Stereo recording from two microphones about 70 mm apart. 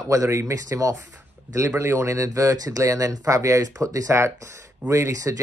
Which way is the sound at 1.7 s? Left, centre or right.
Right.